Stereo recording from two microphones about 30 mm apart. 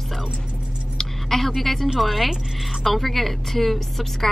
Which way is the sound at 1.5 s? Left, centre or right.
Centre.